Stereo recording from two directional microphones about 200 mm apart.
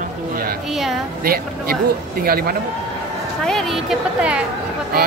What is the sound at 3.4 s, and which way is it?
Speech, centre (ahead or behind).